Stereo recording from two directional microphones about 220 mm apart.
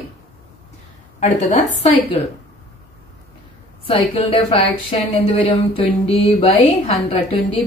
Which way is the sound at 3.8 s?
25° left (ahead or behind).